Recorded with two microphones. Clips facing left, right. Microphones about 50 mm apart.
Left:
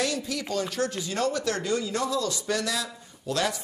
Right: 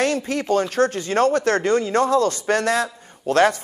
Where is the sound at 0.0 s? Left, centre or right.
Right.